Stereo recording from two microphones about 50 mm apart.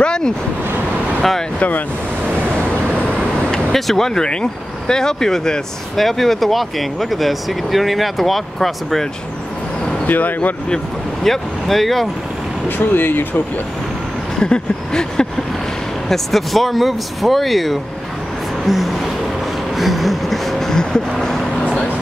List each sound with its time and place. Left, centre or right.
0.0 s vehicle: centre
2.6 s vehicle: right
3.3 s vehicle: centre
3.7 s speech: centre
10.0 s speech: left
11.2 s speech: centre
12.6 s speech: left
14.4 s a sound: centre
16.1 s speech: centre
18.7 s a sound: centre